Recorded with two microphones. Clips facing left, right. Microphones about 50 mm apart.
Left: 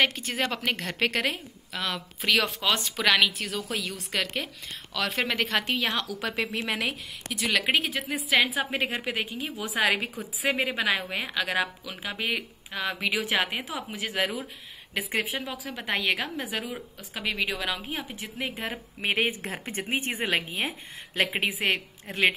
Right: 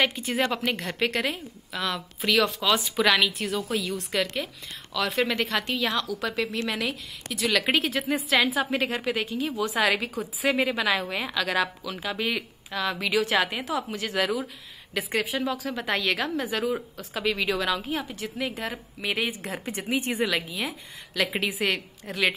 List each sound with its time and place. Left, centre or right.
0.0 s a woman's voice: centre
18.7 s a woman's voice: left